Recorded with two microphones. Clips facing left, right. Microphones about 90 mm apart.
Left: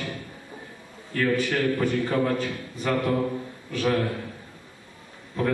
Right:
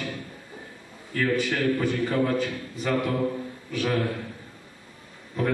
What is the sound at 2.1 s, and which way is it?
Speech, 20° left (ahead or behind).